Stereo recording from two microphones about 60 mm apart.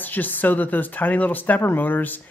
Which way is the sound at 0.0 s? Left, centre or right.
Left.